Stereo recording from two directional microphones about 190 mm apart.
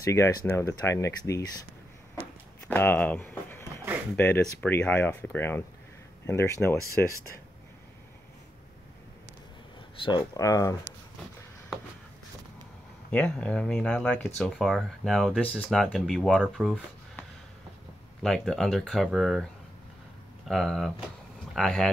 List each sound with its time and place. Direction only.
0.0 s speech: 15° left (ahead or behind)
2.7 s a sound: 10° left (ahead or behind)
4.2 s speech: 10° left (ahead or behind)
9.9 s speech: 25° left (ahead or behind)
13.1 s speech: 5° left (ahead or behind)
18.2 s speech: centre (ahead or behind)
20.4 s speech: centre (ahead or behind)